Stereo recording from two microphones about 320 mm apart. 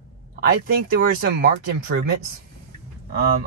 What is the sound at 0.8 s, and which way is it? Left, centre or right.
Speech, right.